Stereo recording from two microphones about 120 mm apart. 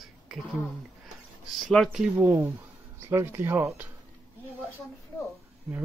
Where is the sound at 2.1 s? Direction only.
15° right (ahead or behind).